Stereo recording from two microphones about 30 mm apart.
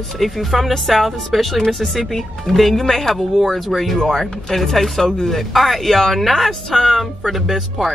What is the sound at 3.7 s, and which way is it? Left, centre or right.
Speech, centre.